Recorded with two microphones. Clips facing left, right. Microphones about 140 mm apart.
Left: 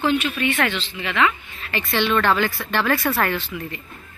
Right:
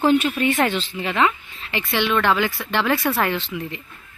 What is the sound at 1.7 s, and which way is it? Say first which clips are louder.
A woman's voice: even; 15° right (ahead or behind).